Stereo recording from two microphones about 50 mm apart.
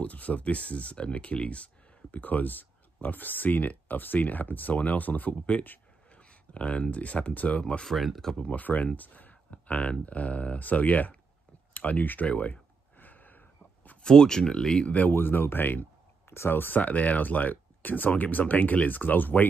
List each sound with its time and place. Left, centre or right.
0.0 s speech: left
7.8 s speech: centre
8.4 s speech: left
12.3 s a sound: left
14.0 s speech: centre
14.9 s speech: left
15.1 s speech: left